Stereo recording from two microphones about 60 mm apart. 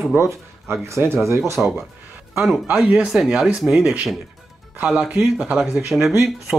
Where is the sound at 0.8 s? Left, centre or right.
Right.